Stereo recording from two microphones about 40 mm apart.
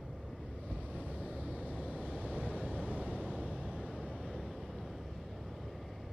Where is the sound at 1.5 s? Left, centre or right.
Right; by 4.7 s centre.